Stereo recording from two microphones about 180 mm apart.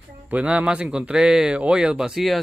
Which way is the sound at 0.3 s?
10° right (ahead or behind).